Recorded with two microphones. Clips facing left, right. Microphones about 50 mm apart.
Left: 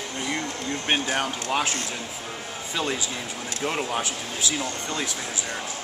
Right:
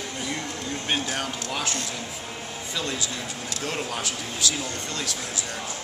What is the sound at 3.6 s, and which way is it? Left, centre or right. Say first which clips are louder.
Speech: left 4 dB; centre.